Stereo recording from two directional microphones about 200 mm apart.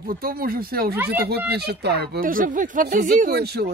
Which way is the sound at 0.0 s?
45° right (ahead or behind).